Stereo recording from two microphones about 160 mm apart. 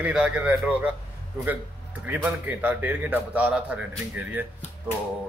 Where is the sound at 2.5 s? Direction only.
10° right (ahead or behind).